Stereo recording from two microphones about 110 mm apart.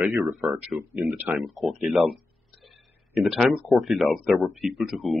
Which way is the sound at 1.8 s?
Centre (ahead or behind).